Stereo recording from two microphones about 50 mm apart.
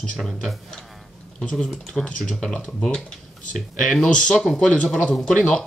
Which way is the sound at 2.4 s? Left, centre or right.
Centre.